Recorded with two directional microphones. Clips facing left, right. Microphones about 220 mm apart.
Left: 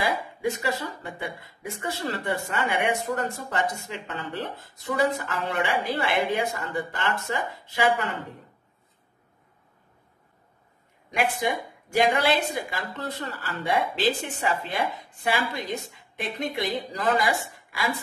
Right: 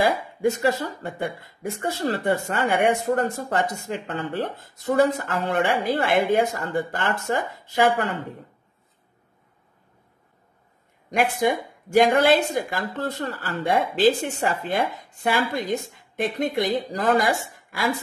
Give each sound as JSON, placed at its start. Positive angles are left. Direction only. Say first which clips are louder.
{"t": 0.0, "sound": "speech", "louder": "right 5 dB", "side_deg": -45}
{"t": 11.1, "sound": "speech", "louder": "right 4 dB", "side_deg": -45}